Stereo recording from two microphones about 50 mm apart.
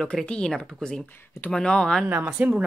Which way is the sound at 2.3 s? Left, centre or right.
Right.